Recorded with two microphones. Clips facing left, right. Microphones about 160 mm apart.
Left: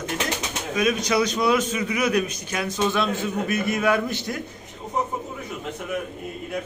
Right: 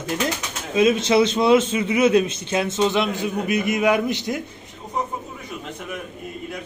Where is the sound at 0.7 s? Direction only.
25° right (ahead or behind).